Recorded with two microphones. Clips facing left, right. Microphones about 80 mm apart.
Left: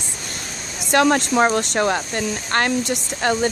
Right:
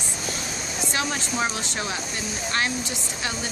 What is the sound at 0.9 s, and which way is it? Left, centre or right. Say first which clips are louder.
Speech: left 13 dB; left.